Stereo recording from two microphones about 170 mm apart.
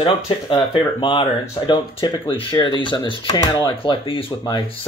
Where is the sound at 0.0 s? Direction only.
30° left (ahead or behind).